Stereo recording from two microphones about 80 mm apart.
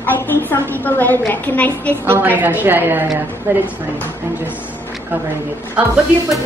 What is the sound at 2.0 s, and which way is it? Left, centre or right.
A woman's voice, right.